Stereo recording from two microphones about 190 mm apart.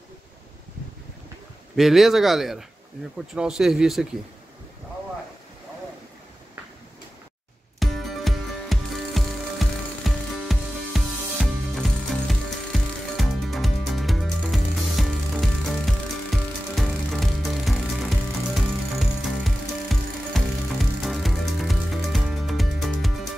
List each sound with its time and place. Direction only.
1.8 s speech: centre (ahead or behind)
7.8 s music: centre (ahead or behind)